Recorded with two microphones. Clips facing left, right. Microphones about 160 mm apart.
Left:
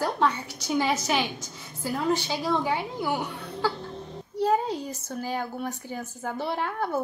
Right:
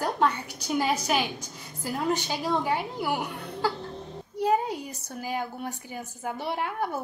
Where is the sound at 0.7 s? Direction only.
5° right (ahead or behind).